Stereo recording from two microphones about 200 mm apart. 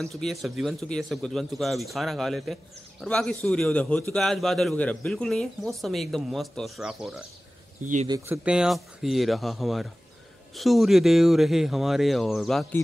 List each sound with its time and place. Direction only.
0.0 s a man's voice: centre (ahead or behind)
7.8 s speech: 40° right (ahead or behind)
8.5 s a man's voice: 5° right (ahead or behind)